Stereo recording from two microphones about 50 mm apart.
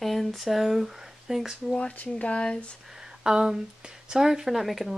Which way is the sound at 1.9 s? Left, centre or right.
Left.